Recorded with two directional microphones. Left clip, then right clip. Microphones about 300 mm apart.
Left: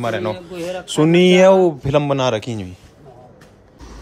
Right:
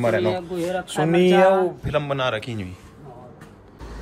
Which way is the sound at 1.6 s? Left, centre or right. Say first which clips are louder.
Left 7 dB; centre.